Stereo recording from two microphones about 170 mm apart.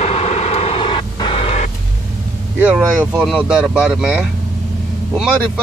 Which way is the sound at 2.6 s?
10° right (ahead or behind).